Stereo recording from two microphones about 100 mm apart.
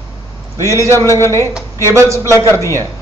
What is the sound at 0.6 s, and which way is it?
A man's voice, 30° right (ahead or behind).